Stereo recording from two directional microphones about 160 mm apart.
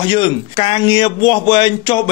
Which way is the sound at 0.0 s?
30° left (ahead or behind).